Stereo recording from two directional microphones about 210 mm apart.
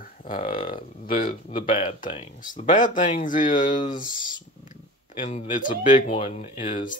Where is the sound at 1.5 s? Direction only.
30° left (ahead or behind).